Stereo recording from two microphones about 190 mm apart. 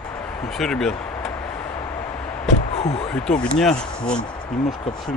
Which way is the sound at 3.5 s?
5° left (ahead or behind).